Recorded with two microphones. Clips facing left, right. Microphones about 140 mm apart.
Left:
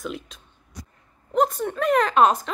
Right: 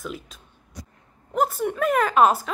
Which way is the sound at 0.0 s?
Centre (ahead or behind).